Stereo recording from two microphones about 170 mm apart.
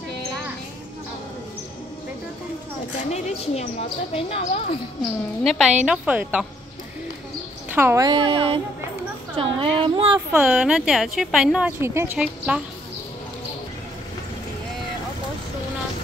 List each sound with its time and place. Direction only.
3.1 s speech: 40° left (ahead or behind)
5.4 s a woman's voice: centre (ahead or behind)
7.7 s a woman's voice: 15° right (ahead or behind)
8.1 s a woman's voice: 30° right (ahead or behind)
10.3 s a woman's voice: 5° right (ahead or behind)